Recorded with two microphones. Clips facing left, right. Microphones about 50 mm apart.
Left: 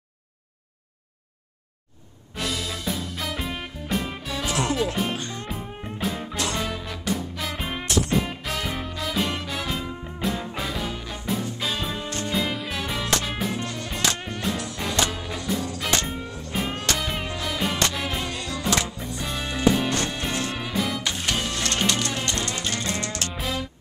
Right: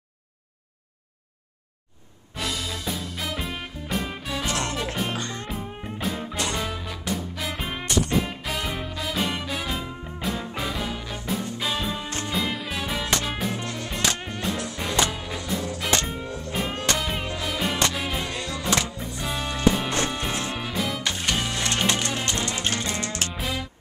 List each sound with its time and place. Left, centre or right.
2.3 s music: centre
18.3 s music: right
18.6 s music: centre
21.8 s music: centre